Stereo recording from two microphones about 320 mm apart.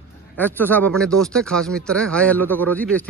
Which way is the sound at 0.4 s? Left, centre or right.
Centre.